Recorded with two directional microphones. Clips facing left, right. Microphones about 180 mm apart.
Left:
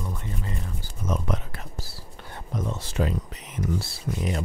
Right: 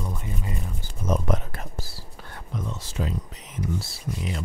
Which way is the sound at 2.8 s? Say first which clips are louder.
Left 5 dB; 65° left (ahead or behind).